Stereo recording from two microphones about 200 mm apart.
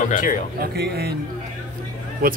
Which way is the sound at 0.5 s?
50° right (ahead or behind).